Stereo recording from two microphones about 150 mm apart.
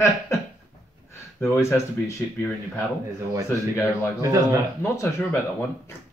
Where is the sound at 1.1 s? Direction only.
15° left (ahead or behind).